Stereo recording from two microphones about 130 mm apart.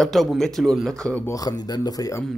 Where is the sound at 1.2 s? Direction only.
30° left (ahead or behind).